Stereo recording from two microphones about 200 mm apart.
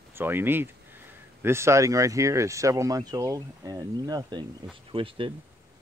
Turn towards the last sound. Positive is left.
turn(degrees=-25)  # may be behind; listen again after turning